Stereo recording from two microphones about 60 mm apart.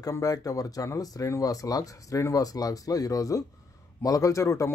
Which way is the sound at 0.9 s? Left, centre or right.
Left.